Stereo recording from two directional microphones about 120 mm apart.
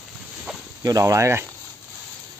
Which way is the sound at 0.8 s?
30° right (ahead or behind).